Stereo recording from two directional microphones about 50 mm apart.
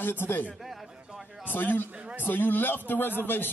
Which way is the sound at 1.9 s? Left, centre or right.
Right.